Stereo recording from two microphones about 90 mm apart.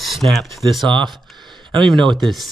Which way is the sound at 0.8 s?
60° right (ahead or behind).